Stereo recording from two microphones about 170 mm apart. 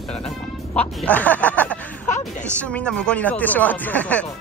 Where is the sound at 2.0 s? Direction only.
45° left (ahead or behind).